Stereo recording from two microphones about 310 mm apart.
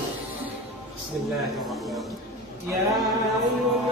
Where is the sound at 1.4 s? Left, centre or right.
Centre.